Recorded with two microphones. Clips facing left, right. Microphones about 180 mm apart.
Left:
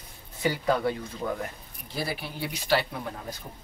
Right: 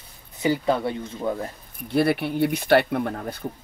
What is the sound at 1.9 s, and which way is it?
Speech, 60° right (ahead or behind).